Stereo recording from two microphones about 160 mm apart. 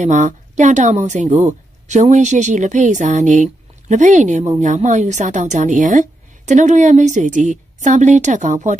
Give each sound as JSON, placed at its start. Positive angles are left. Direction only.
{"t": 0.0, "sound": "a woman's voice", "side_deg": -45}